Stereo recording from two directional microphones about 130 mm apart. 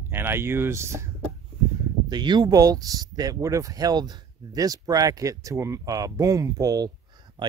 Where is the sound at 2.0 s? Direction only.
35° right (ahead or behind).